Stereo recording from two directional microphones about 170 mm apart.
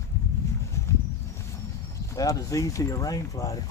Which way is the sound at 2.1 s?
20° left (ahead or behind).